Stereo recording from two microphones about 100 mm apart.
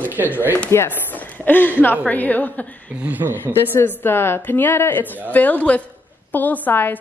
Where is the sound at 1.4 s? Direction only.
20° left (ahead or behind).